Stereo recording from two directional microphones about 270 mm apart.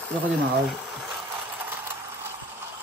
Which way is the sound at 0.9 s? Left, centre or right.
Centre.